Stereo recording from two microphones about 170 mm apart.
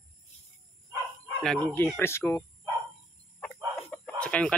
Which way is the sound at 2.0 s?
15° left (ahead or behind).